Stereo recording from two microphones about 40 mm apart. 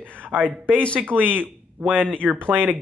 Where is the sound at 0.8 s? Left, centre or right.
Left.